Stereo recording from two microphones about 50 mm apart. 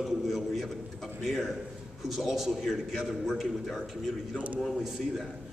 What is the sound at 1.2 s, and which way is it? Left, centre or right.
A man's voice, centre.